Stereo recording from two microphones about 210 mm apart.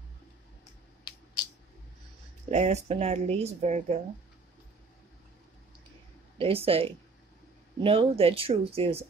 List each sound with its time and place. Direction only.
2.5 s speech: 35° right (ahead or behind)
6.3 s speech: 25° right (ahead or behind)